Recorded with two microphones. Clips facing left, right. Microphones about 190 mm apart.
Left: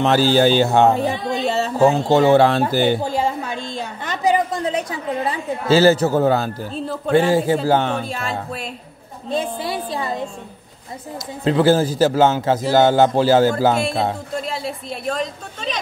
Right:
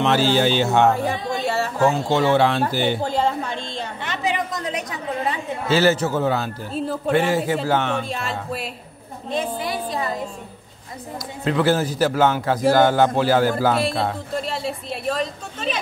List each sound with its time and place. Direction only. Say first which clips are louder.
0.0 s speech: left 3 dB; 40° left (ahead or behind)
0.9 s a man's voice: left 3 dB; 20° left (ahead or behind)
2.0 s speech: left 5 dB; 40° left (ahead or behind)
3.0 s a woman's voice: even; 10° left (ahead or behind)
4.0 s speech: left 7 dB; 40° left (ahead or behind)
8.0 s a woman's voice: left 2 dB; centre (ahead or behind)
9.3 s speech: left 2 dB; 30° left (ahead or behind)
11.4 s a man's voice: left 4 dB; 30° left (ahead or behind)
14.3 s a woman's voice: even; centre (ahead or behind)